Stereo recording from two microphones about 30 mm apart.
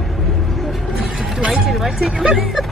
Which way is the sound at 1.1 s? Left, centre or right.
Centre.